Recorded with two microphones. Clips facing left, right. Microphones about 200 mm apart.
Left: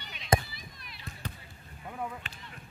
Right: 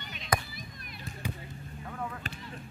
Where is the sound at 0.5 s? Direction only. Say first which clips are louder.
Right 4 dB; 50° right (ahead or behind).